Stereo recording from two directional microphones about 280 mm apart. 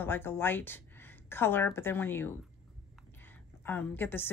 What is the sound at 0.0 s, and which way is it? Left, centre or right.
A woman's voice, centre.